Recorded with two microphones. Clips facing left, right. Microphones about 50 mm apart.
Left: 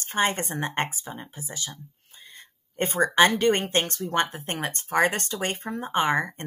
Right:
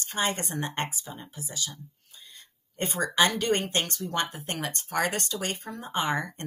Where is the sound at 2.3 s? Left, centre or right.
Left.